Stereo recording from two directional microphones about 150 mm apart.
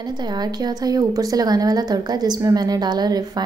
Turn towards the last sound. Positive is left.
turn(degrees=-25)  # may be behind; listen again after turning